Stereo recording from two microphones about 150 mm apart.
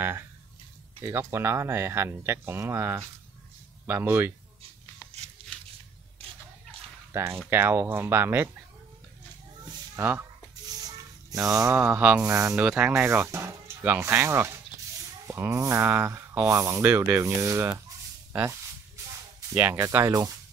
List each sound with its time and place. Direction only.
1.0 s speech: 20° right (ahead or behind)
7.1 s speech: 15° right (ahead or behind)
9.9 s speech: 15° right (ahead or behind)
11.2 s speech: 20° right (ahead or behind)